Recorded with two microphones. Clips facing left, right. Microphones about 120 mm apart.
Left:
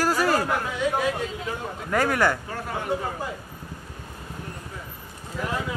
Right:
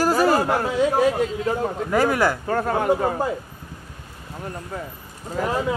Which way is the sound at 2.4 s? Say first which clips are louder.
Right 9 dB; 55° right (ahead or behind).